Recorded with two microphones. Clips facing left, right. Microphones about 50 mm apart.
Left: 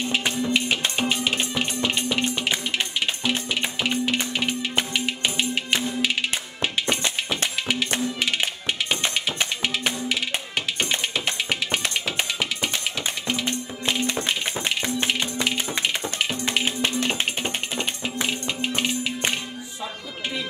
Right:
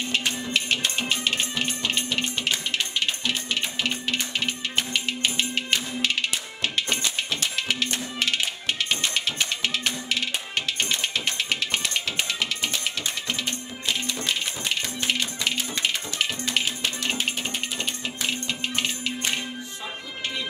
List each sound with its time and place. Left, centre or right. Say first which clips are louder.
0.1 s music: left 3 dB; centre
3.8 s music: left 4 dB; centre
9.6 s music: left 2 dB; centre
11.1 s music: left 1 dB; centre
14.0 s a sound: left 4 dB; left
17.0 s music: left 2 dB; left